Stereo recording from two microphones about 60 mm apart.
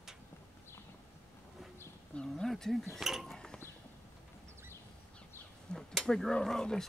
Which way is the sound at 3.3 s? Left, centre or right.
Centre.